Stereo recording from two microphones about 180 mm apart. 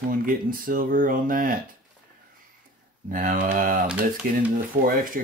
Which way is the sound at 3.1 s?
50° right (ahead or behind).